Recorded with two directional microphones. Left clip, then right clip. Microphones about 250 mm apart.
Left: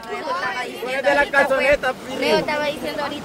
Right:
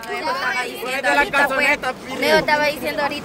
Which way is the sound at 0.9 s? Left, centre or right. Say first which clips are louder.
Left 1 dB; right.